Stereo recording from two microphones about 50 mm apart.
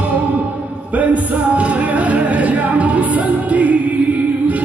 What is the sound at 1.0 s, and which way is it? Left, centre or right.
Music, right.